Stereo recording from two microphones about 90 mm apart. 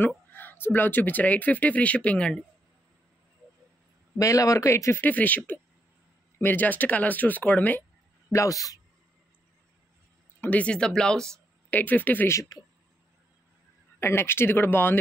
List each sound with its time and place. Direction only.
0.3 s speech: 20° left (ahead or behind)
4.2 s speech: 40° left (ahead or behind)
5.0 s speech: 20° left (ahead or behind)
8.3 s speech: 40° left (ahead or behind)
10.4 s speech: 15° left (ahead or behind)
11.7 s speech: 20° left (ahead or behind)
12.3 s speech: 40° left (ahead or behind)
13.9 s speech: 25° left (ahead or behind)